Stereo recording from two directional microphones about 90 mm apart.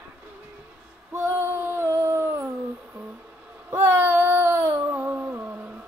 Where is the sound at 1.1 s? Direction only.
25° right (ahead or behind).